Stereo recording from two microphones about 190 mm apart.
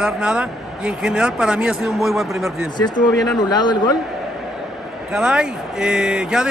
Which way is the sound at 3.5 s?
20° left (ahead or behind).